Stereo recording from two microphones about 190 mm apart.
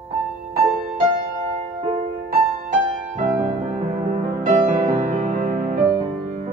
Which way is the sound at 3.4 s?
35° right (ahead or behind).